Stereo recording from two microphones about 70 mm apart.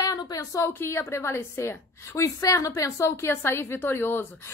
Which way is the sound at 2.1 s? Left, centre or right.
Left.